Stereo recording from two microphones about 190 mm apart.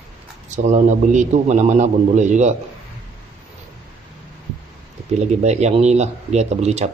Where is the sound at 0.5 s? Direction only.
40° right (ahead or behind).